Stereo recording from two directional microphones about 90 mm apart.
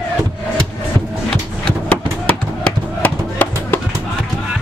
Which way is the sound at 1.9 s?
15° left (ahead or behind).